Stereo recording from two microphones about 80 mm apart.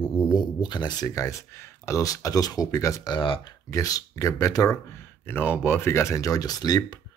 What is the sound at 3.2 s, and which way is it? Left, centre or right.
Speech, left.